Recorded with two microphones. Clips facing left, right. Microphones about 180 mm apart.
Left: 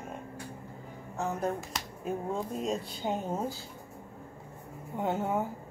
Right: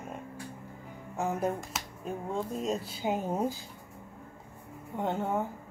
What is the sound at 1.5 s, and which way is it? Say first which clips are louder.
Speech: left 1 dB; centre (ahead or behind).